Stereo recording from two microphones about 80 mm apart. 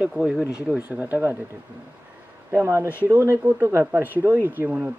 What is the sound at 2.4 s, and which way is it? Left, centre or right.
Speech, right.